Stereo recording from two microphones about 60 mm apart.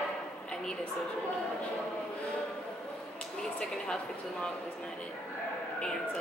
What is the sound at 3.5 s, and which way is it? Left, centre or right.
Speech, centre.